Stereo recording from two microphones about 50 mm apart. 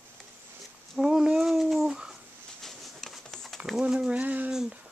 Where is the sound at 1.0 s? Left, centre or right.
Centre.